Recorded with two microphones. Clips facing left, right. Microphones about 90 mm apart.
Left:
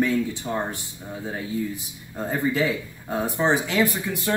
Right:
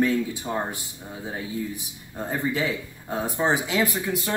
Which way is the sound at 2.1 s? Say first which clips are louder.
Left 3 dB; 15° right (ahead or behind).